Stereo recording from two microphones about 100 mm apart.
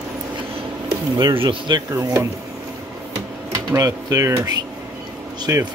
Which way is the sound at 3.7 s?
35° right (ahead or behind).